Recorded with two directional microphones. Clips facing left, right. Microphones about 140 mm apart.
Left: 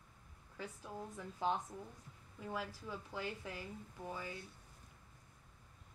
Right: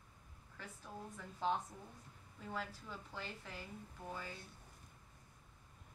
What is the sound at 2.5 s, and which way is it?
A woman's voice, 10° left (ahead or behind).